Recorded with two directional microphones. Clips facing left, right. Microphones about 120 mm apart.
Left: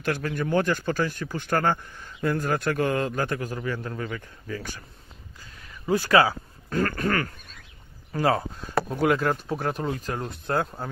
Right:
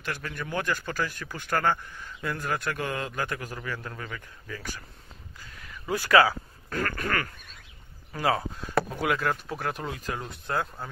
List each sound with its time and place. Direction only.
0.0 s speech: 40° left (ahead or behind)